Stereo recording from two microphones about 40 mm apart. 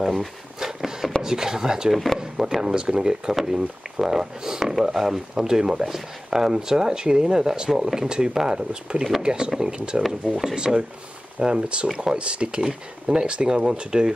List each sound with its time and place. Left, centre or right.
0.0 s speech: centre
0.6 s a sound: centre
1.2 s speech: centre